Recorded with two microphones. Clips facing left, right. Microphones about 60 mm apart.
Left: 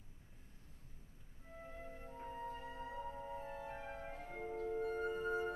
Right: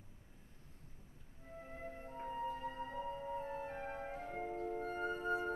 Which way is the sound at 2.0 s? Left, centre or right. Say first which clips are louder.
Right 5 dB; right.